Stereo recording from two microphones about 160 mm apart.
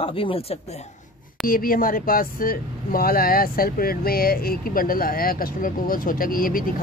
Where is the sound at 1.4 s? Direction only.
60° left (ahead or behind).